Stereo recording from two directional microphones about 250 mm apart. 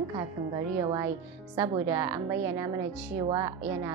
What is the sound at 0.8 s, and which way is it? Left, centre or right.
A woman's voice, centre.